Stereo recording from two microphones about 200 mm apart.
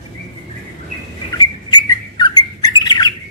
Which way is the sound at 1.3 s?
20° left (ahead or behind).